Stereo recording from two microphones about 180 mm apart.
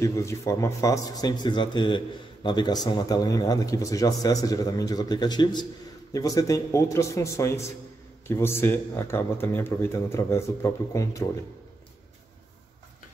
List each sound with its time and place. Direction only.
0.0 s speech: 15° left (ahead or behind)